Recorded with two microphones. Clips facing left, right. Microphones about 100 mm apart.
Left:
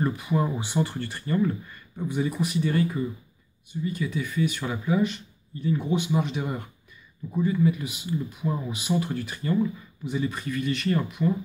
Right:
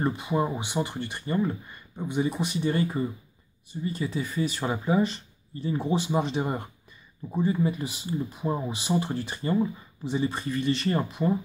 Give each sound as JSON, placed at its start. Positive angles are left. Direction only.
{"t": 0.0, "sound": "speech", "side_deg": -25}